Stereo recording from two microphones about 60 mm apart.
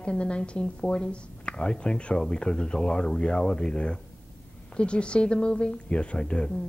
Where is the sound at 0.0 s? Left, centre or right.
Centre.